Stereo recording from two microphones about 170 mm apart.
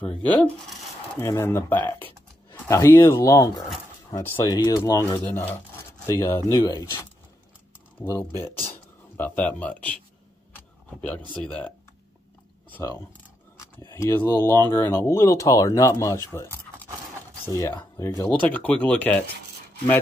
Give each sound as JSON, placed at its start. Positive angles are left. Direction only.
{"t": 0.4, "sound": "speech", "side_deg": 0}
{"t": 1.2, "sound": "speech", "side_deg": 15}
{"t": 5.3, "sound": "speech", "side_deg": 10}
{"t": 6.5, "sound": "speech", "side_deg": 25}
{"t": 8.0, "sound": "speech", "side_deg": 15}
{"t": 10.5, "sound": "a sound", "side_deg": 10}
{"t": 11.4, "sound": "speech", "side_deg": 5}
{"t": 12.6, "sound": "a sound", "side_deg": 10}
{"t": 13.9, "sound": "speech", "side_deg": 15}
{"t": 17.5, "sound": "speech", "side_deg": 20}